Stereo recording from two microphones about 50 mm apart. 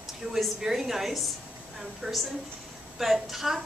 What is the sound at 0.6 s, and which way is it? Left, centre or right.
A woman's voice, centre.